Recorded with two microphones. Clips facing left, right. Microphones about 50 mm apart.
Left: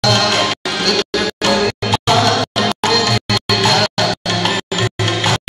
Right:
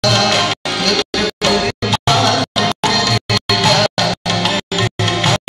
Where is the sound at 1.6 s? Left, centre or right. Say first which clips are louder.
Left 1 dB; left.